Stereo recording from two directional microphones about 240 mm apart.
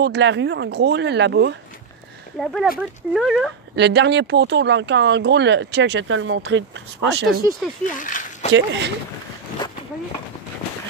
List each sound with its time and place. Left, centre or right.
0.0 s speech: right
2.3 s speech: centre
3.7 s speech: right
7.8 s a sound: left
8.5 s speech: right